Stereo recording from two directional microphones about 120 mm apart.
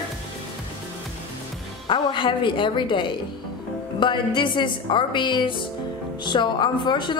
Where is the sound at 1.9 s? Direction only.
45° left (ahead or behind).